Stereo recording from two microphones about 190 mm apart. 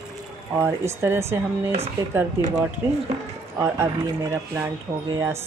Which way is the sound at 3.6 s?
15° right (ahead or behind).